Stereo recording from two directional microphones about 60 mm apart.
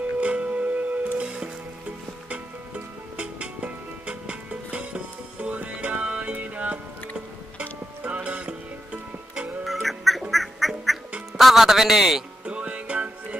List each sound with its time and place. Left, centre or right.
0.2 s music: right
9.7 s duck: centre
10.3 s quack: centre
11.3 s a man's voice: centre
12.4 s music: right